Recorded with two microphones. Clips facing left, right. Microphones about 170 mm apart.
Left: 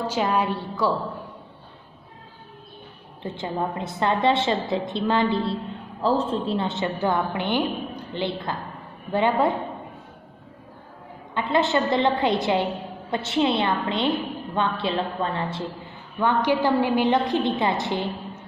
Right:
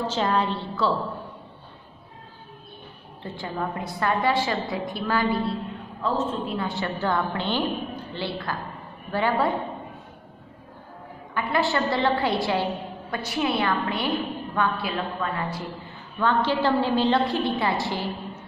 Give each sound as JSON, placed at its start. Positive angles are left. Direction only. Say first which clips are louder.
{"t": 0.0, "sound": "a woman's voice", "louder": "left 1 dB", "side_deg": 10}
{"t": 3.2, "sound": "a woman's voice", "louder": "left 3 dB", "side_deg": 20}
{"t": 11.3, "sound": "a woman's voice", "louder": "left 3 dB", "side_deg": 20}
{"t": 16.2, "sound": "a woman's voice", "louder": "left 1 dB", "side_deg": 15}